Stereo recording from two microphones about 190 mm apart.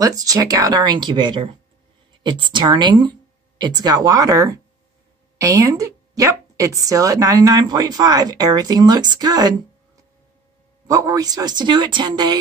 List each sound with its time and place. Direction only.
0.0 s speech: 20° right (ahead or behind)
10.9 s speech: 20° right (ahead or behind)